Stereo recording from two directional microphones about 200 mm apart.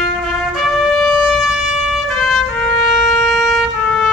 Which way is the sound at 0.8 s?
Centre (ahead or behind).